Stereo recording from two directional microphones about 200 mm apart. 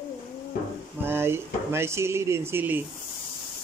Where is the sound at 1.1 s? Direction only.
10° right (ahead or behind).